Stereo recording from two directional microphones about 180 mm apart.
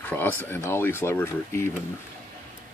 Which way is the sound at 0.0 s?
10° left (ahead or behind).